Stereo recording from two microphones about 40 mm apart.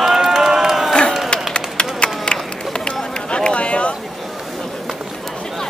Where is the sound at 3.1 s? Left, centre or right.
Left.